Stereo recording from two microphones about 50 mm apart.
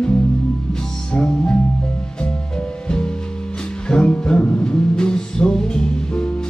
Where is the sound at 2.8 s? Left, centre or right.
Centre.